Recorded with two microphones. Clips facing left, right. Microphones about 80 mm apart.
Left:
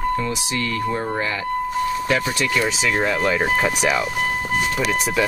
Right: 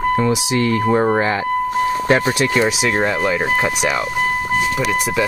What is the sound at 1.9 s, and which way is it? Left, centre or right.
Speech, right.